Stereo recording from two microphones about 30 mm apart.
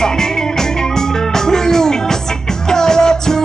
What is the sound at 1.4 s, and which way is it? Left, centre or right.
Music, centre.